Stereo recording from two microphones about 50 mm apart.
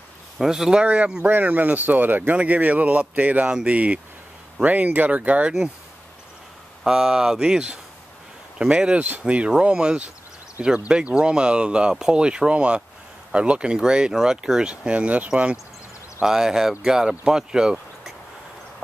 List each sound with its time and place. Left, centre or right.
0.4 s speech: centre
0.8 s speech: right
6.8 s speech: centre
14.9 s speech: right
16.3 s speech: centre